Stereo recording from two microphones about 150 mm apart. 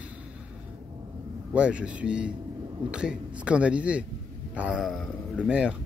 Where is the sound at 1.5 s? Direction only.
5° right (ahead or behind).